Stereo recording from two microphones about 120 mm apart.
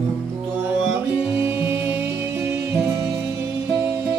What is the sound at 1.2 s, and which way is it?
Music, 20° right (ahead or behind).